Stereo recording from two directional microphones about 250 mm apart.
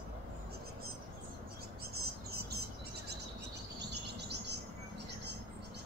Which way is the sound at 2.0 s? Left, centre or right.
Right.